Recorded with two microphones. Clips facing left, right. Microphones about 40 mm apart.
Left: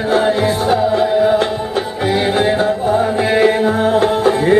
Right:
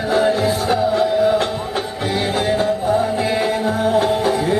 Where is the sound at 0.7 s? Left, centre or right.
Centre.